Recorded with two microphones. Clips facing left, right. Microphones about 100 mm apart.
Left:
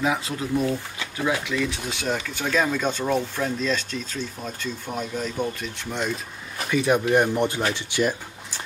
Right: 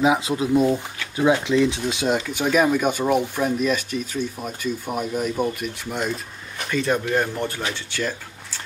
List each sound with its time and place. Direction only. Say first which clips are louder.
0.0 s speech: right 6 dB; 20° right (ahead or behind)
6.7 s speech: left 2 dB; 15° left (ahead or behind)